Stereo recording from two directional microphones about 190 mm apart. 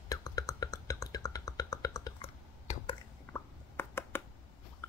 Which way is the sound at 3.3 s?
10° left (ahead or behind).